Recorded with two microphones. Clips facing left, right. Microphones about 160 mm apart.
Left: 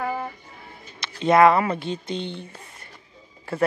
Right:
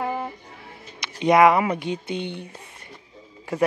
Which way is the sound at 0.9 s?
15° right (ahead or behind).